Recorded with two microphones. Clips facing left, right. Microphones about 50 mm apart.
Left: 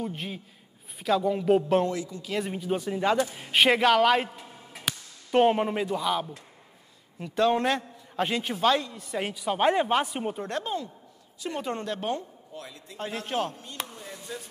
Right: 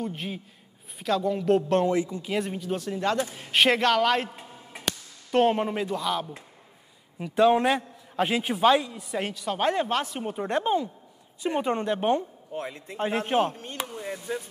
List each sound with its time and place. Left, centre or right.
0.0 s a man's voice: centre
1.9 s a woman's voice: right
2.4 s a man's voice: centre
7.2 s a man's voice: centre
9.2 s speech: centre
10.4 s a woman's voice: right
13.8 s a sound: right